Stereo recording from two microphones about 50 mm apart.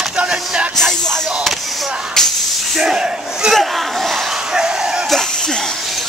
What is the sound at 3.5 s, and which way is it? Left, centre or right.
Battle cry, centre.